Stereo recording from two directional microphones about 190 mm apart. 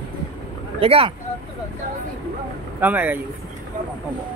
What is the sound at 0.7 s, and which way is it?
Speech, 30° right (ahead or behind).